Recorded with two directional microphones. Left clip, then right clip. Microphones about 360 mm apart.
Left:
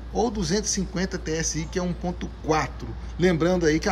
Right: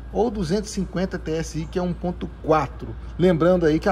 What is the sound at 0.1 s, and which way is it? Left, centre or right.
A man's voice, centre.